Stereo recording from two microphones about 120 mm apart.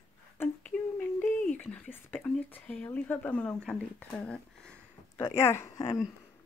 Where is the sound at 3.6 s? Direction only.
5° left (ahead or behind).